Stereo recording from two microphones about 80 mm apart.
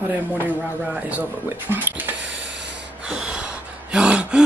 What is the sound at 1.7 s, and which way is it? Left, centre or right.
Speech, right.